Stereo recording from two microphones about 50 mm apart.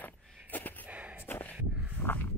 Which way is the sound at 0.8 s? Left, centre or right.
Right.